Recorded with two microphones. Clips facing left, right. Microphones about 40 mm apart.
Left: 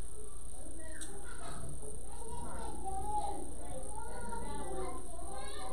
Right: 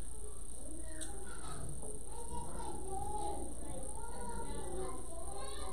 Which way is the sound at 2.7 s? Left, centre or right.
Centre.